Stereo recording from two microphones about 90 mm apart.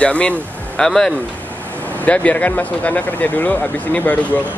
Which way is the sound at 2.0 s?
15° left (ahead or behind).